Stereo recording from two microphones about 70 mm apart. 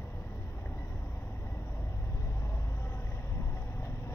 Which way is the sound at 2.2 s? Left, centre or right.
Left.